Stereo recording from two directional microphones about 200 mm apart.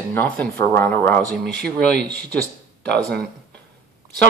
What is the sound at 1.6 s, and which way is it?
Speech, 50° right (ahead or behind).